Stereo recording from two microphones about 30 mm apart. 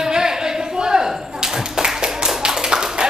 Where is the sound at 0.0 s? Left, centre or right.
Centre.